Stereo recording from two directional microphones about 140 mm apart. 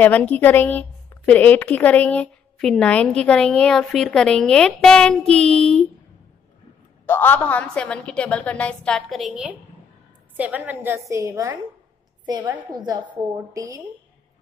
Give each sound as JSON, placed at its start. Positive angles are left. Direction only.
{"t": 0.0, "sound": "a woman's voice", "side_deg": 10}
{"t": 7.1, "sound": "a woman's voice", "side_deg": 15}